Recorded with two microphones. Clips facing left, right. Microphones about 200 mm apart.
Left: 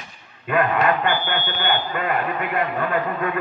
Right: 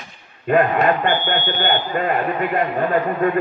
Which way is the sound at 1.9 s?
35° right (ahead or behind).